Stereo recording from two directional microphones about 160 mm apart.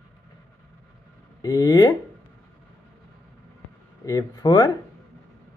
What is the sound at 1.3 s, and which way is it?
Speech, 25° left (ahead or behind).